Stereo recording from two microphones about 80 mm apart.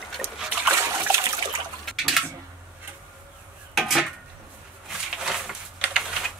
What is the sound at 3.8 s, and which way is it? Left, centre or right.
Dishes, centre.